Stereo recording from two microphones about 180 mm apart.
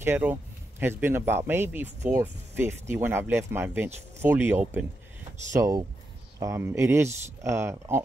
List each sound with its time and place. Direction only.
0.0 s speech: 10° right (ahead or behind)